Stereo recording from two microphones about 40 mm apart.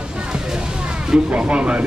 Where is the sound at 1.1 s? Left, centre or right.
Right.